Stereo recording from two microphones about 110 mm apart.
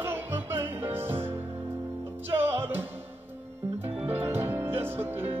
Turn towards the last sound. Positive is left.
turn(degrees=-20)  # may be behind; listen again after turning